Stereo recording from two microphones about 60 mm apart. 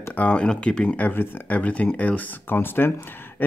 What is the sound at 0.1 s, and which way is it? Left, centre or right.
Speech, centre.